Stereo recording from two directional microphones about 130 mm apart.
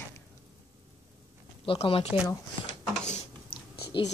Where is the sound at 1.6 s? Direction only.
45° left (ahead or behind).